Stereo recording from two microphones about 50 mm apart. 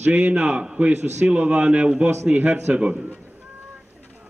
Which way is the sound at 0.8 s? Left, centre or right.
Right.